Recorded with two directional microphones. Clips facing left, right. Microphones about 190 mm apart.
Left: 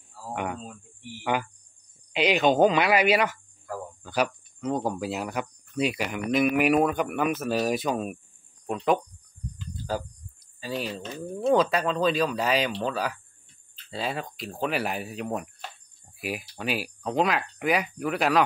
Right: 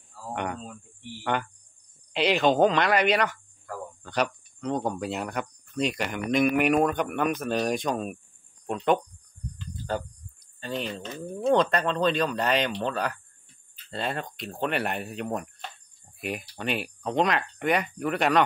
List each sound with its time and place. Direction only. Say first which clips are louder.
0.3 s speech: even; 5° left (ahead or behind)